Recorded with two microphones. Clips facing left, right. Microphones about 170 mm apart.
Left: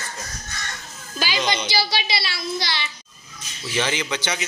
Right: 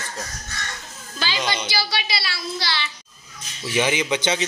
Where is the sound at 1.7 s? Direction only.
20° left (ahead or behind).